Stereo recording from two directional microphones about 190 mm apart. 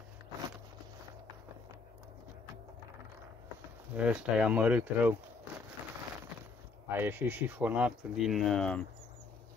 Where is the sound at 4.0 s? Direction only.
5° right (ahead or behind).